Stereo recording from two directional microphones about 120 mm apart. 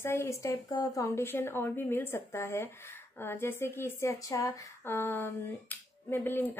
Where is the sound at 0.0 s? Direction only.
20° left (ahead or behind).